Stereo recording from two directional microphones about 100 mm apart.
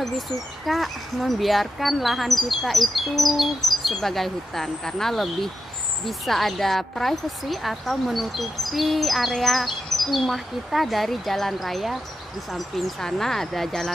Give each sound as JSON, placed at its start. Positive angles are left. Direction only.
{"t": 0.7, "sound": "speech", "side_deg": 0}